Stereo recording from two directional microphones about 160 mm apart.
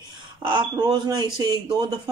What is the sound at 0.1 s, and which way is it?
A man's voice, 30° right (ahead or behind).